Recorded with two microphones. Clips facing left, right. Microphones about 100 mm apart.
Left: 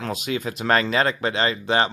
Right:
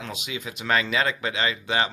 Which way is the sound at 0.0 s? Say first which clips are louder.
Left 7 dB; 45° left (ahead or behind).